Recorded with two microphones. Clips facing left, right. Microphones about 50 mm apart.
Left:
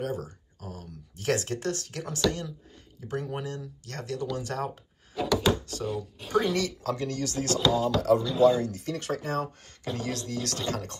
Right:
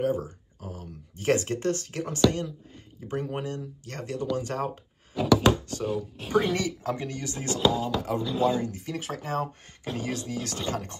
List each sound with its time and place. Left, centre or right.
0.0 s speech: right
3.1 s speech: right
5.1 s a sound: centre
5.9 s speech: centre
6.5 s speech: right